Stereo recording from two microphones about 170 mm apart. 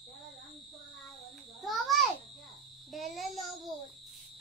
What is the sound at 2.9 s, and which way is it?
Child singing, centre (ahead or behind).